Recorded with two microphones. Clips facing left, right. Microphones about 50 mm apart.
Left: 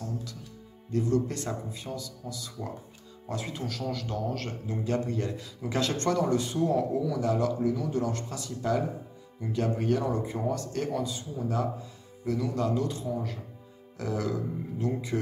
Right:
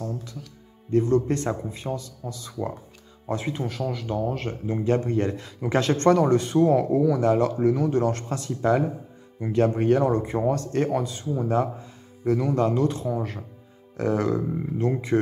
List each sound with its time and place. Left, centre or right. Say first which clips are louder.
0.0 s music: right 4 dB; right
0.9 s a man's voice: right 6 dB; right